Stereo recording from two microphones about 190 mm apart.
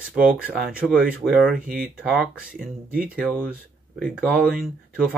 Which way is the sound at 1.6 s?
50° right (ahead or behind).